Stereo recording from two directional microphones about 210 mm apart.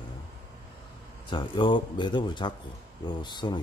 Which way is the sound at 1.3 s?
20° left (ahead or behind).